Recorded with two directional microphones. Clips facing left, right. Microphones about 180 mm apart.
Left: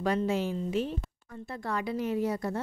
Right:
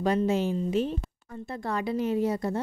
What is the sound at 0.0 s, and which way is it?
Speech, 20° right (ahead or behind).